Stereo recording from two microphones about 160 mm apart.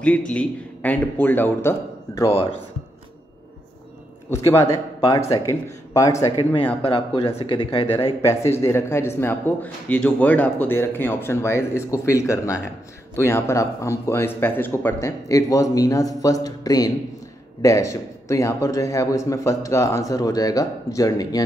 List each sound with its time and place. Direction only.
0.0 s a man's voice: 10° left (ahead or behind)
2.2 s speech: 35° left (ahead or behind)
4.3 s a man's voice: 15° left (ahead or behind)
6.5 s speech: 30° left (ahead or behind)
8.2 s a man's voice: 15° left (ahead or behind)